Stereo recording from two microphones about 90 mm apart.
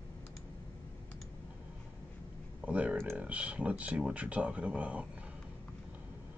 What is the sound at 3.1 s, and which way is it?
Speech, 15° right (ahead or behind).